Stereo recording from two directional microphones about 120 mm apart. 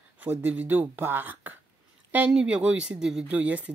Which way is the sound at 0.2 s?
15° right (ahead or behind).